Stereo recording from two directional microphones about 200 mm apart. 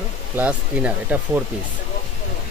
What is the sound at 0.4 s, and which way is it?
Speech, 5° right (ahead or behind).